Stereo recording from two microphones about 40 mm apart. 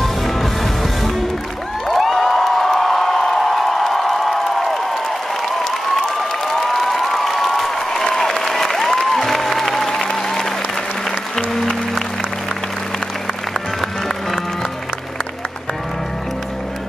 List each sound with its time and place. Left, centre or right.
0.0 s music: centre
1.9 s a sound: centre
5.4 s applause: centre
11.1 s music: centre
13.5 s music: centre